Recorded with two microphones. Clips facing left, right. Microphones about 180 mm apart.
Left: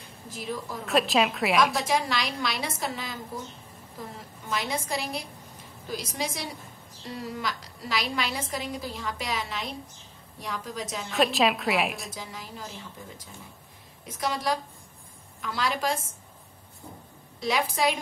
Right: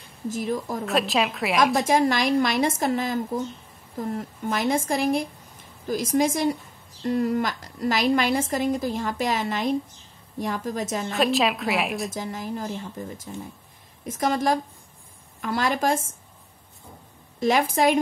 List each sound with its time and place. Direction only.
0.3 s a woman's voice: 45° right (ahead or behind)
0.8 s a woman's voice: centre (ahead or behind)
1.8 s a woman's voice: 50° right (ahead or behind)
11.1 s a woman's voice: centre (ahead or behind)
12.1 s a woman's voice: 45° right (ahead or behind)
17.4 s a woman's voice: 50° right (ahead or behind)